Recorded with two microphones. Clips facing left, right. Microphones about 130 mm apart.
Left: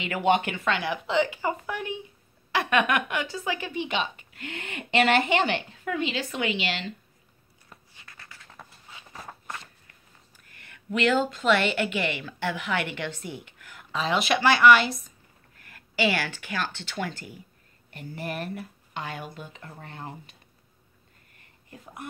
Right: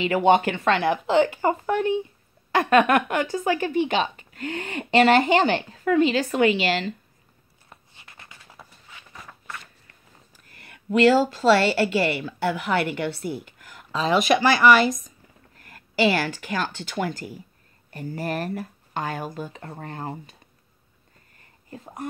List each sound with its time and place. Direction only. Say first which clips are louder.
0.0 s a woman's voice: right 5 dB; 35° right (ahead or behind)
7.7 s a sound: right 2 dB; 20° right (ahead or behind)
11.0 s a woman's voice: right 6 dB; 35° right (ahead or behind)
21.6 s speech: right 5 dB; 35° right (ahead or behind)